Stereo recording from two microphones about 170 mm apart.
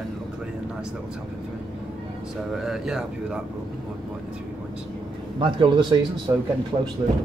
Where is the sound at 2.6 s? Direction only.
5° right (ahead or behind).